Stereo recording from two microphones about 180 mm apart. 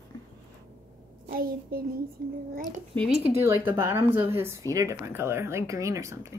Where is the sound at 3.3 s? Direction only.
15° right (ahead or behind).